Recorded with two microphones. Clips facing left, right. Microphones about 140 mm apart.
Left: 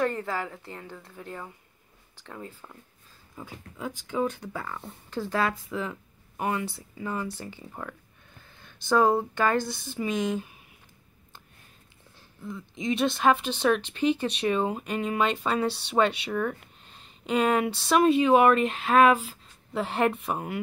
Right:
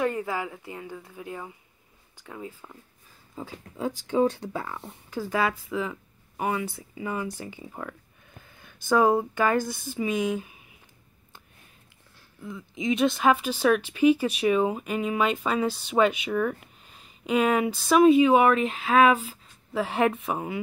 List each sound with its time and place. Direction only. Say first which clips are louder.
0.0 s speech: right 1 dB; 10° right (ahead or behind)
3.3 s speech: right 5 dB; 30° right (ahead or behind)
4.5 s speech: right 2 dB; 15° right (ahead or behind)
8.8 s speech: right 1 dB; 10° right (ahead or behind)
12.4 s speech: right 2 dB; 5° right (ahead or behind)